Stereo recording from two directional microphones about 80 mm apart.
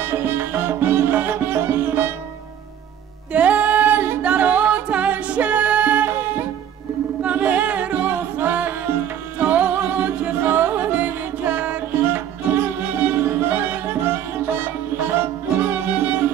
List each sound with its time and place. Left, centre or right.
0.0 s music: right
3.3 s a capella: centre
7.2 s a capella: centre
9.4 s music: centre